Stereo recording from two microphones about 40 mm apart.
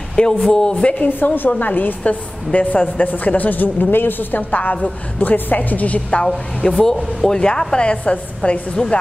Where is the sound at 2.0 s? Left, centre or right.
Left.